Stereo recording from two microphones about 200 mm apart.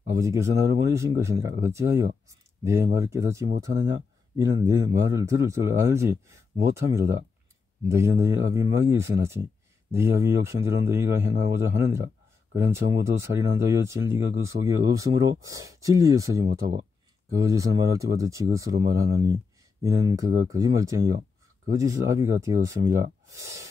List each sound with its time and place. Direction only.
0.0 s speech: 15° right (ahead or behind)